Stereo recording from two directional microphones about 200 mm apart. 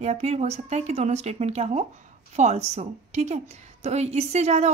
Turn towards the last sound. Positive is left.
turn(degrees=-35)  # may be behind; listen again after turning